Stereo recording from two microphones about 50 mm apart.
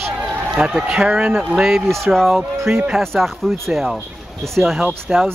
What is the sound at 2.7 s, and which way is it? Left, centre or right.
Speech, right.